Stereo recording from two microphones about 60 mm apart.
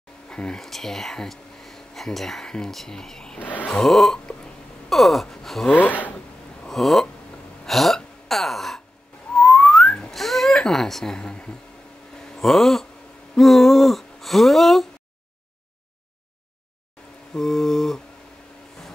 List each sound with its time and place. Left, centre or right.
0.3 s speech: centre
3.3 s speech: left
3.6 s a sound: centre
4.8 s gasp: centre
5.7 s speech: left
6.7 s a sound: centre
7.6 s gasp: centre
9.3 s whistling: centre
10.1 s a sound: centre
12.3 s speech: centre
13.4 s a sound: centre
17.3 s mantra: centre